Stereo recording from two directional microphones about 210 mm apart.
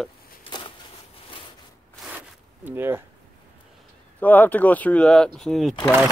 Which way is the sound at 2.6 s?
10° right (ahead or behind).